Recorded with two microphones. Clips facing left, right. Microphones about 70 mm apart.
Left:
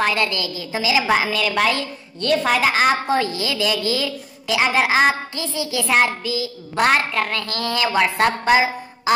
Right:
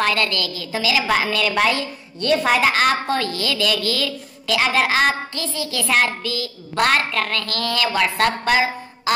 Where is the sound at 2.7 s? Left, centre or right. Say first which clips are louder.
Left 1 dB; centre.